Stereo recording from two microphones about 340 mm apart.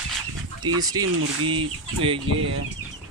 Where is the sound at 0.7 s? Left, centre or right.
Centre.